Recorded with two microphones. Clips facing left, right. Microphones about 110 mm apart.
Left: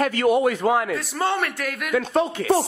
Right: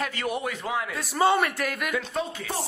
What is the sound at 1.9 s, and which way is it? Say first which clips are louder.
Speech: left 8 dB; 70° left (ahead or behind).